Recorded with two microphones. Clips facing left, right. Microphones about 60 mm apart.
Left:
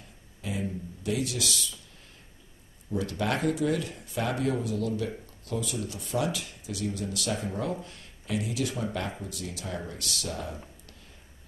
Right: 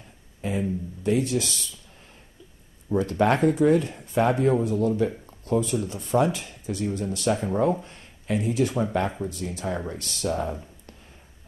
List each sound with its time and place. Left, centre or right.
0.4 s a sound: right
1.0 s speech: right
2.9 s speech: right